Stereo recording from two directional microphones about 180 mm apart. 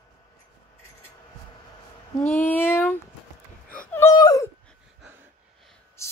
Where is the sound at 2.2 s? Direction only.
10° left (ahead or behind).